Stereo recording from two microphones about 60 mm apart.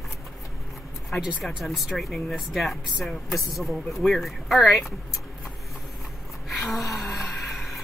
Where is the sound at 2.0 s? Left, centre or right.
Centre.